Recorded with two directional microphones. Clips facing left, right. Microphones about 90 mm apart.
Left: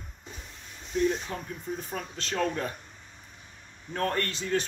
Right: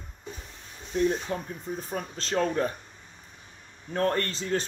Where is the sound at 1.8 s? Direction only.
40° right (ahead or behind).